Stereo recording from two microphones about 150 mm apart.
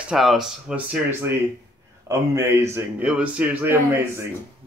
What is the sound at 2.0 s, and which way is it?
Speech, 20° right (ahead or behind).